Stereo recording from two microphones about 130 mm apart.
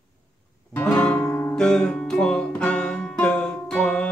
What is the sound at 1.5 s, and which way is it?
Music, 5° left (ahead or behind).